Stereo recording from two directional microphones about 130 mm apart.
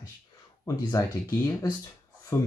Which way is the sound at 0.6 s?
25° left (ahead or behind).